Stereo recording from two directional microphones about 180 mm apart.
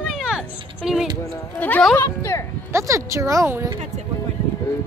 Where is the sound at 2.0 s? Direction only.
15° left (ahead or behind).